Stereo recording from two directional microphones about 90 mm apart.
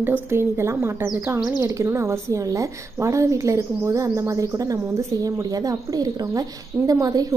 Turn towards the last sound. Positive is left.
turn(degrees=-40)  # may be behind; listen again after turning